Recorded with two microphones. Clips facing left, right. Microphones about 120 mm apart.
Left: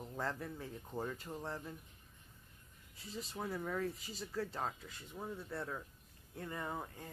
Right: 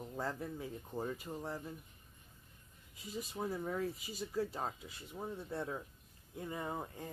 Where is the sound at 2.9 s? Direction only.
15° right (ahead or behind).